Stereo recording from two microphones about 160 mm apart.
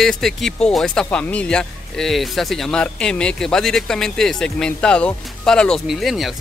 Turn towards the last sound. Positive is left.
turn(degrees=0)  # may be behind; listen again after turning